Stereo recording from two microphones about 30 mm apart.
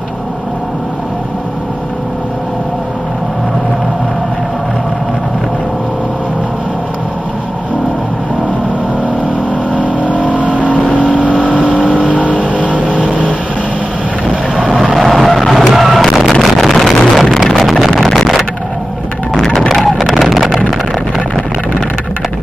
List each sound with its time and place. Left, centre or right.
9.8 s vehicle: right
10.4 s vehicle: left
12.4 s vehicle: left
14.7 s vehicle: centre
15.5 s a sound: centre
16.3 s vehicle: centre
16.6 s vehicle: centre
17.1 s music: centre
17.5 s vehicle: centre
19.7 s vehicle: centre